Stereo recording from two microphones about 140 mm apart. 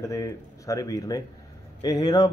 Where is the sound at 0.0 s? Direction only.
25° left (ahead or behind).